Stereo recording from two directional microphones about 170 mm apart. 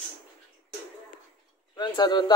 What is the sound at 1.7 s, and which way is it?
Speech, 25° left (ahead or behind).